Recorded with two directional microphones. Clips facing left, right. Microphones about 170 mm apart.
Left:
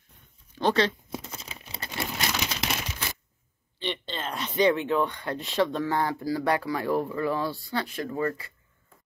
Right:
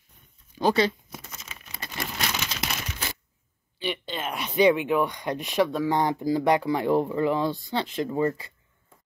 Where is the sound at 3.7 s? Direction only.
10° right (ahead or behind).